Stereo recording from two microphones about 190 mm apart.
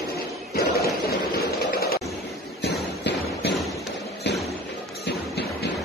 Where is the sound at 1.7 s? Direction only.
55° left (ahead or behind).